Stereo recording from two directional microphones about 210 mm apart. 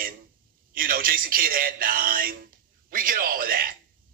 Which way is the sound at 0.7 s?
45° right (ahead or behind).